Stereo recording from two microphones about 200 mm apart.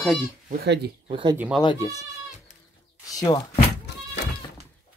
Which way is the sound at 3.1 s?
20° left (ahead or behind).